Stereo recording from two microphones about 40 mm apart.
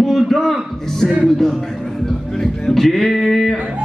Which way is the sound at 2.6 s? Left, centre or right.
Centre.